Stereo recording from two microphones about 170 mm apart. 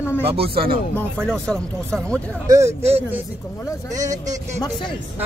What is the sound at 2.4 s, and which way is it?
Speech, 20° right (ahead or behind).